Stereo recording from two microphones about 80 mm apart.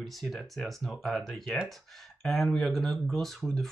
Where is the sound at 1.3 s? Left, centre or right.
Centre.